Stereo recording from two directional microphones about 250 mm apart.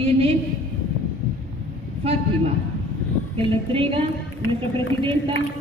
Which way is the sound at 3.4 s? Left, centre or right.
Right.